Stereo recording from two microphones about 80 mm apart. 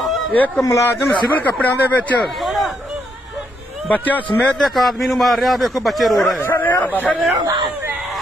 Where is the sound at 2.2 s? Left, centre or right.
Centre.